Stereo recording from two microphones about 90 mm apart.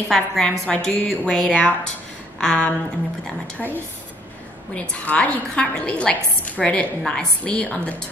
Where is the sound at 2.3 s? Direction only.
15° left (ahead or behind).